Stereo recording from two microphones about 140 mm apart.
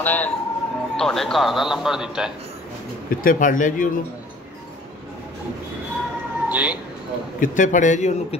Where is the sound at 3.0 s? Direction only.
80° left.